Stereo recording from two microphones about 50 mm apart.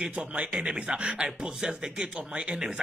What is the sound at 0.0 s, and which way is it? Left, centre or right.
Speech, right.